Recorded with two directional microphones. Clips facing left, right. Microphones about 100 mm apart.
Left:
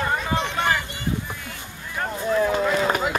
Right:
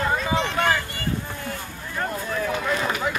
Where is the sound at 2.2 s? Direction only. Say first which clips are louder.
Left 9 dB; 25° left (ahead or behind).